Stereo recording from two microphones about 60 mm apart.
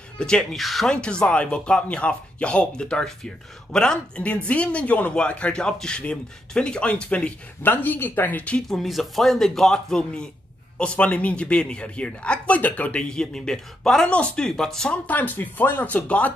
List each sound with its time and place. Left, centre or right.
0.2 s speech: centre
0.6 s speech: centre
1.0 s speech: centre
7.6 s speech: left
8.5 s speech: centre
10.8 s speech: left
15.0 s speech: left